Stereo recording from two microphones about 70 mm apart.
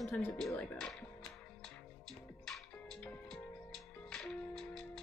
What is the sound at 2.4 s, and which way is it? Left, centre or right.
Music, centre.